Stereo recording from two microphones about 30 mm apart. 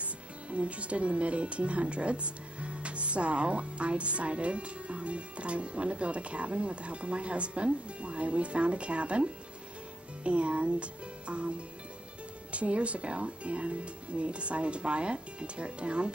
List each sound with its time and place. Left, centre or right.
0.0 s speech: right